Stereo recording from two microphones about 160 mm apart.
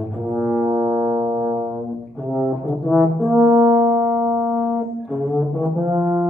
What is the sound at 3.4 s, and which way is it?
Music, 20° right (ahead or behind).